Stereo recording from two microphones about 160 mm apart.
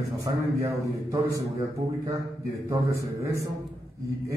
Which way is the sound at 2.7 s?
20° right (ahead or behind).